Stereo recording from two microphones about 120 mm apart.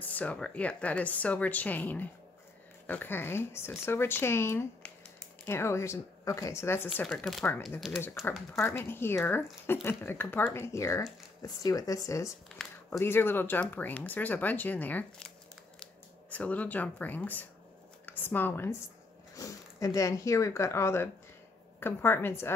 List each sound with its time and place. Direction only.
0.0 s speech: 10° left (ahead or behind)
12.4 s a sound: 5° left (ahead or behind)
13.0 s speech: 20° left (ahead or behind)
19.3 s speech: 30° left (ahead or behind)